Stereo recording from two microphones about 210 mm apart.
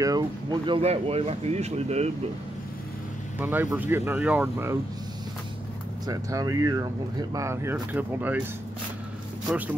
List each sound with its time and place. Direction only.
0.0 s speech: 20° right (ahead or behind)
3.3 s speech: 10° right (ahead or behind)
6.0 s speech: 15° right (ahead or behind)